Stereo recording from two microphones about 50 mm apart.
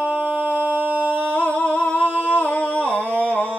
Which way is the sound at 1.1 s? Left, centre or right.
Left.